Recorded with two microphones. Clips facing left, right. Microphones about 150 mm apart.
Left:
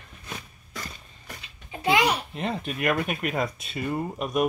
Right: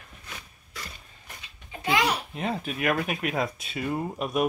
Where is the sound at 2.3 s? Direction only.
Centre (ahead or behind).